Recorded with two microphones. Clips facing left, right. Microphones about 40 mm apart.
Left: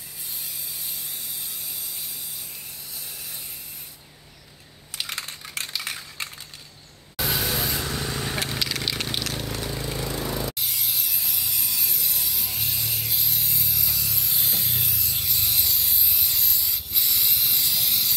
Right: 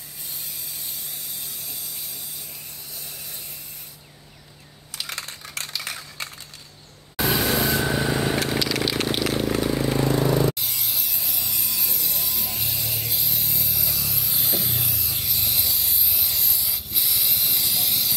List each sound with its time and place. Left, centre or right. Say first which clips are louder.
5.0 s typing: even; centre
7.2 s vehicle: right 5 dB; centre
7.8 s vehicle: right 6 dB; right
8.5 s vehicle: right 5 dB; centre; by 9.8 s right
9.8 s vehicle: right 8 dB; right
10.5 s a sound: even; centre